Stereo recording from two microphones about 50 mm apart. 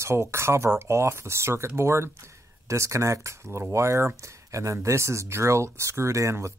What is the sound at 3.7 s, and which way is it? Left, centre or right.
Speech, right.